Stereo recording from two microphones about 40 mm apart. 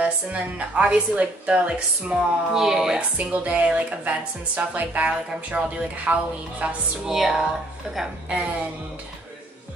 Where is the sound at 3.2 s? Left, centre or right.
Right.